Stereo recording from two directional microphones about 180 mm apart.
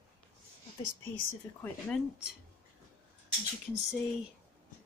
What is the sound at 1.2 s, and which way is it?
Speech, 10° left (ahead or behind).